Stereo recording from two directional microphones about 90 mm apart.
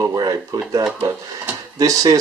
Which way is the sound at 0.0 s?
45° right (ahead or behind).